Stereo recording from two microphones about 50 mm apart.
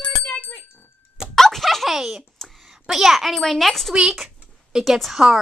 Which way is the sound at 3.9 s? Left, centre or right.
Centre.